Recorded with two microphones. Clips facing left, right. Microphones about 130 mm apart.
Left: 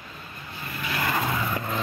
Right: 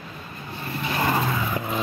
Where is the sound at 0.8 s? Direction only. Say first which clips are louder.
Right 4 dB; 30° right (ahead or behind).